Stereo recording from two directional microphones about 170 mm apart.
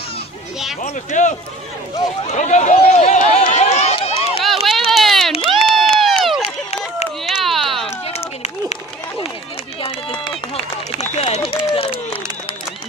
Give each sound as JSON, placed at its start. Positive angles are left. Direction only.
{"t": 0.8, "sound": "speech", "side_deg": 45}
{"t": 2.3, "sound": "run", "side_deg": 45}
{"t": 4.5, "sound": "a sound", "side_deg": 0}
{"t": 5.4, "sound": "crowd", "side_deg": 0}
{"t": 6.4, "sound": "a sound", "side_deg": 35}
{"t": 7.2, "sound": "bleat", "side_deg": 0}
{"t": 9.8, "sound": "run", "side_deg": 30}